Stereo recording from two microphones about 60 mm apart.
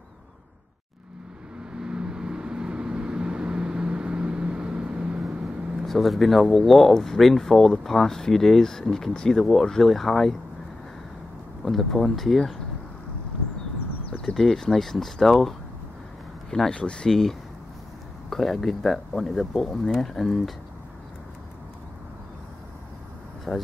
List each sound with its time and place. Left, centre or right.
1.7 s vehicle: centre
5.9 s speech: centre
11.6 s speech: centre
14.2 s speech: centre
23.5 s speech: centre